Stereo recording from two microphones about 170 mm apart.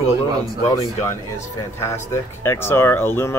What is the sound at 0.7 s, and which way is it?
Speech, 20° left (ahead or behind).